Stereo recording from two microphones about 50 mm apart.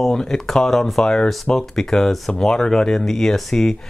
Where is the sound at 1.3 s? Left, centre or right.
Centre.